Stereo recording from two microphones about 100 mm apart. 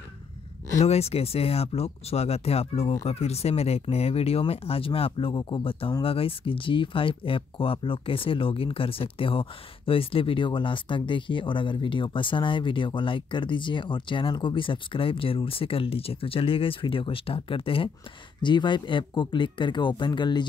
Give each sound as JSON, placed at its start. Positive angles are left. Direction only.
{"t": 0.8, "sound": "speech", "side_deg": 90}
{"t": 18.4, "sound": "speech", "side_deg": 50}